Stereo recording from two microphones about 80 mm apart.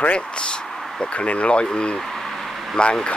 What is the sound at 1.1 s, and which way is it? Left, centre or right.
Speech, centre.